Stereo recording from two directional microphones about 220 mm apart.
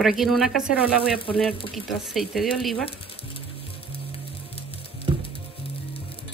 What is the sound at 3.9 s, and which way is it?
Music, 25° left (ahead or behind).